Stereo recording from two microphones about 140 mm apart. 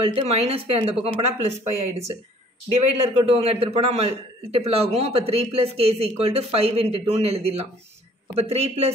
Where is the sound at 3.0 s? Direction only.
45° right (ahead or behind).